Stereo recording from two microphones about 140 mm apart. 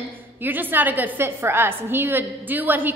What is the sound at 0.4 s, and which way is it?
A woman's voice, 15° right (ahead or behind).